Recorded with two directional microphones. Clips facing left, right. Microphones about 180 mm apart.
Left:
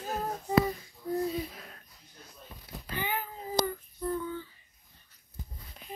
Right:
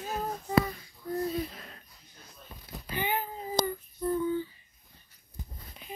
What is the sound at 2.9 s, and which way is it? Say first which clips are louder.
Child singing: right 3 dB; 20° right (ahead or behind).